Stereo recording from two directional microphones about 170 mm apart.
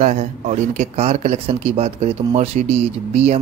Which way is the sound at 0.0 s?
45° right (ahead or behind).